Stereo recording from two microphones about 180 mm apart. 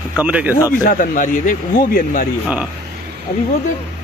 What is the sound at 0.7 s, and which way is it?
Speech, 50° left (ahead or behind).